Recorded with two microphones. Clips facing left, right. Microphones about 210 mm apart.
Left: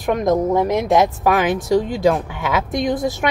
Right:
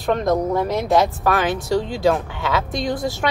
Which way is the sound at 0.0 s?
20° left (ahead or behind).